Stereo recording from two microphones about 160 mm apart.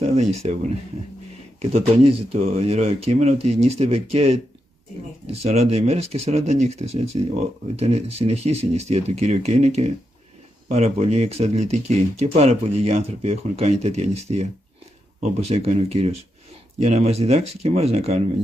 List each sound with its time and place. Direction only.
0.0 s speech: 45° right (ahead or behind)
1.6 s speech: 40° right (ahead or behind)
5.4 s speech: 40° right (ahead or behind)